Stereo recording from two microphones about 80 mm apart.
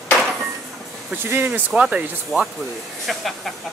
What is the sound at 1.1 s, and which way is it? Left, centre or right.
Speech, right.